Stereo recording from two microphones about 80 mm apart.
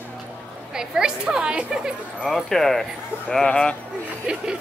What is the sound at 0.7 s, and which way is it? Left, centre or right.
A woman's voice, centre.